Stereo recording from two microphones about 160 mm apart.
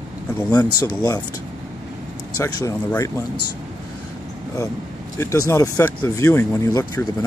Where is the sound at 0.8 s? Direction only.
25° left (ahead or behind).